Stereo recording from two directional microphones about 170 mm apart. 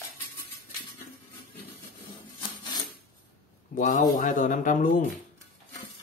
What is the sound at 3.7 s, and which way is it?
A man's voice, 50° left (ahead or behind).